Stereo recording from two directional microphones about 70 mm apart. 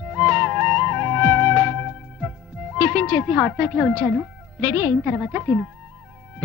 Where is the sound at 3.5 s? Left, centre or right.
Centre.